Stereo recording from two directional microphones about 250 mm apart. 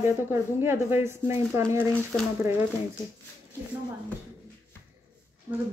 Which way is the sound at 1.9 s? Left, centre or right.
Centre.